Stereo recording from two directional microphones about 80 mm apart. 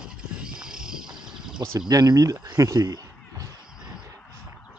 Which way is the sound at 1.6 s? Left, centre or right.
Right.